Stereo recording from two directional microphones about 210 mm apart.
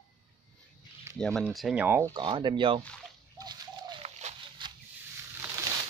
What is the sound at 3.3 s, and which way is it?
Bird, 20° right (ahead or behind).